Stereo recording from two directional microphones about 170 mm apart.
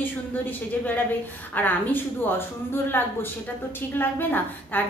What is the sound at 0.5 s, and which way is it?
A woman's voice, 10° left (ahead or behind).